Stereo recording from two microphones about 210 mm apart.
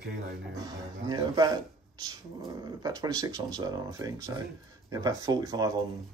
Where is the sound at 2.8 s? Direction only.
15° right (ahead or behind).